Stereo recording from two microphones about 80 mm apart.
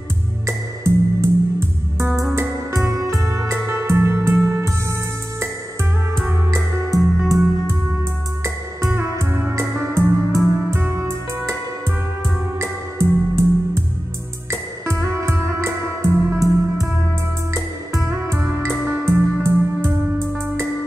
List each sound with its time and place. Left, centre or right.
0.5 s music: right
6.2 s music: right
8.9 s music: right
12.5 s music: right
17.9 s music: right